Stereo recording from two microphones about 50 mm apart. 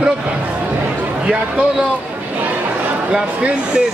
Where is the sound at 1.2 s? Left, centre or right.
Right.